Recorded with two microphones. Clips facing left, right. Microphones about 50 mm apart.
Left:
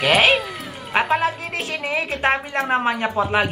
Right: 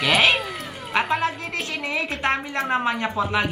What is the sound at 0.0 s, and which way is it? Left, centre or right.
Cat, centre.